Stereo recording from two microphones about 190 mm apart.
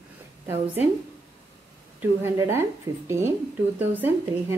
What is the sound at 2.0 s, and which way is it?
A woman's voice, 15° right (ahead or behind).